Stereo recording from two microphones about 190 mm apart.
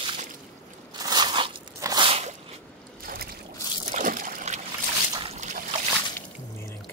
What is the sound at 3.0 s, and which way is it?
Boat, 50° right (ahead or behind).